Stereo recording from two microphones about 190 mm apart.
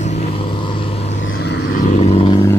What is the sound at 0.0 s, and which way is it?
Vehicle, 35° left (ahead or behind).